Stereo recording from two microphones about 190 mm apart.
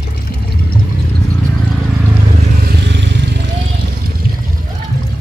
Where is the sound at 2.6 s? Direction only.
65° right (ahead or behind).